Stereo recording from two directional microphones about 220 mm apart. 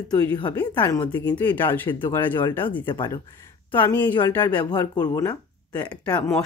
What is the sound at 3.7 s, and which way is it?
Speech, 10° left (ahead or behind).